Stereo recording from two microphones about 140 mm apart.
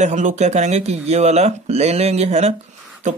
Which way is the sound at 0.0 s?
60° right (ahead or behind).